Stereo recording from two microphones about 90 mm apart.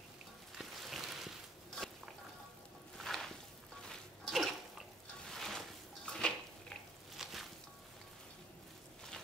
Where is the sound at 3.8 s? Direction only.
Centre (ahead or behind).